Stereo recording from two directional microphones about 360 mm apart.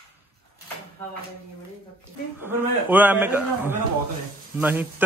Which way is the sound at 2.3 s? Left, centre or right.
Centre.